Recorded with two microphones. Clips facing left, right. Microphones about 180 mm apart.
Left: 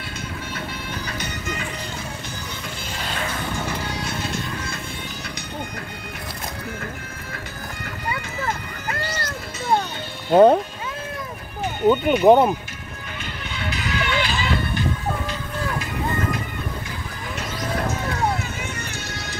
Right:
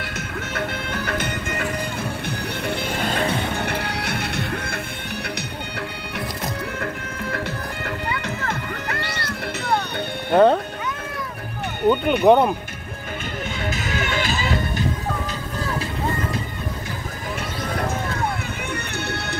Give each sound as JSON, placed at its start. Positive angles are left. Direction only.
{"t": 0.6, "sound": "music", "side_deg": -55}
{"t": 3.5, "sound": "music", "side_deg": -65}
{"t": 6.8, "sound": "music", "side_deg": -60}
{"t": 9.0, "sound": "music", "side_deg": -65}
{"t": 10.3, "sound": "speech", "side_deg": 10}
{"t": 11.9, "sound": "speech", "side_deg": 5}
{"t": 13.6, "sound": "music", "side_deg": -45}